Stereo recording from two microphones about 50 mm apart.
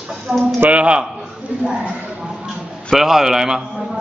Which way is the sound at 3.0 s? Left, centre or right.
Centre.